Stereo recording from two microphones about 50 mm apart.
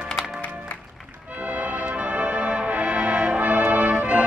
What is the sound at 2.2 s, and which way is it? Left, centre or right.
Music, right.